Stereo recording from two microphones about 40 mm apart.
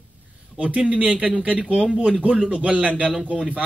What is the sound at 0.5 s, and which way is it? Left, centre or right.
Speech, right.